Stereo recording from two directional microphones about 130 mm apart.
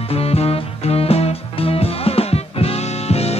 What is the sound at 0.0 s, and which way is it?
Music, 50° left (ahead or behind).